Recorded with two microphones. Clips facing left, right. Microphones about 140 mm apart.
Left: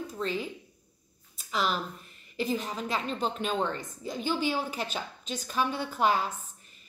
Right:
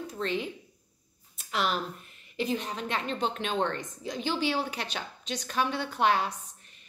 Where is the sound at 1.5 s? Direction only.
Centre (ahead or behind).